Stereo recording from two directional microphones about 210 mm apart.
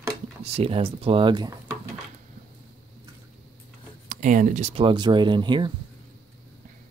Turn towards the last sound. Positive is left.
turn(degrees=-20)  # may be behind; listen again after turning